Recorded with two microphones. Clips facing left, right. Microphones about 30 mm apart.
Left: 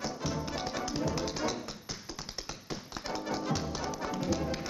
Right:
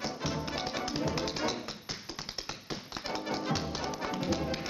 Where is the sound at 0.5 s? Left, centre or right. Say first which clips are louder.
Even; right.